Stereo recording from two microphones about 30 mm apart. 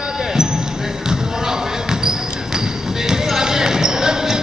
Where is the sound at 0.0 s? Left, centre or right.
Centre.